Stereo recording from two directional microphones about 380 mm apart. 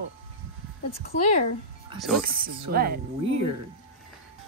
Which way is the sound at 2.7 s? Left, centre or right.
Right.